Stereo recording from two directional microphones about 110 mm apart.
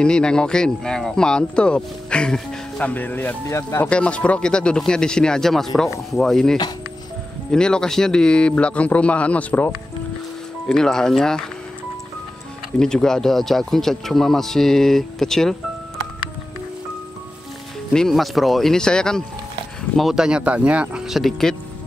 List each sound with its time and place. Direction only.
0.0 s speech: 5° left (ahead or behind); by 3.9 s 25° left (ahead or behind)
3.9 s speech: 10° left (ahead or behind)
10.7 s speech: 5° left (ahead or behind)
12.7 s speech: 5° left (ahead or behind)
17.9 s speech: centre (ahead or behind)
20.0 s speech: 5° right (ahead or behind)